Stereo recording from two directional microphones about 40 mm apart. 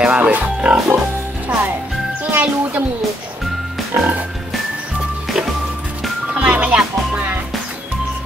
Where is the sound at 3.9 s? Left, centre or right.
Right.